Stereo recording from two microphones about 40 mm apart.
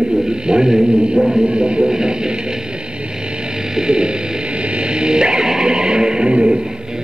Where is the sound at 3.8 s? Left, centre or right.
Right.